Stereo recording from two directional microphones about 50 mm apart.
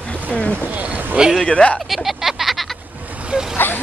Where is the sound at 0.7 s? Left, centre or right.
Right.